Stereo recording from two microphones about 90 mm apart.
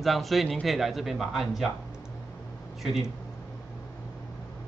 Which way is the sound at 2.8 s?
5° right (ahead or behind).